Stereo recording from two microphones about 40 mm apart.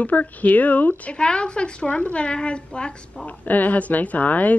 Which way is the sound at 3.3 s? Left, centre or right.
Left.